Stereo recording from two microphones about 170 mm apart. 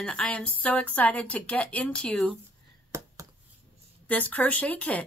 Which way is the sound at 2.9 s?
15° right (ahead or behind).